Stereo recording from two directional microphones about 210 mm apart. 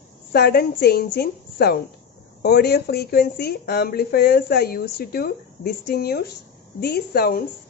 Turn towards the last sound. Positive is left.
turn(degrees=45)  # may be behind; listen again after turning